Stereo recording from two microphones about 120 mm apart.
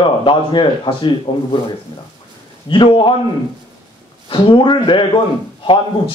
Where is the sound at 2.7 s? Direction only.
45° left (ahead or behind).